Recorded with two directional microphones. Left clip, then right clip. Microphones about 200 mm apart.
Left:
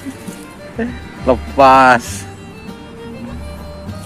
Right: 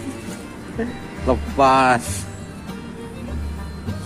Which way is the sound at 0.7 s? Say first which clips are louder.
Left 4 dB; 20° left (ahead or behind).